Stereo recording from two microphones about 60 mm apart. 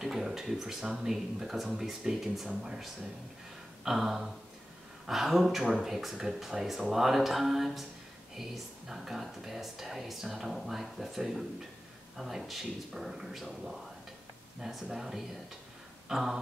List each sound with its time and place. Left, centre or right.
0.0 s speech: centre